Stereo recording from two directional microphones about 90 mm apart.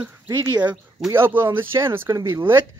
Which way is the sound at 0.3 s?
50° right (ahead or behind).